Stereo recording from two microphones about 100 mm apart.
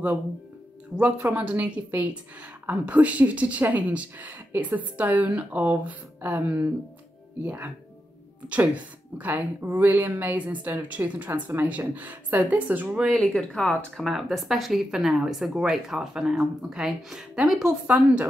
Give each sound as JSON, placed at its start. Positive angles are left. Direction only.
{"t": 0.9, "sound": "a woman's voice", "side_deg": -15}
{"t": 13.0, "sound": "speech", "side_deg": 0}
{"t": 17.6, "sound": "a woman's voice", "side_deg": -15}